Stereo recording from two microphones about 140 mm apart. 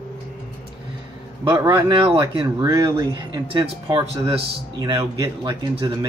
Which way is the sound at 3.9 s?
35° right (ahead or behind).